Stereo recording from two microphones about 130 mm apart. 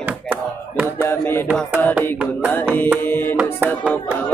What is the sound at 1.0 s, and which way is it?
Music, 20° left (ahead or behind).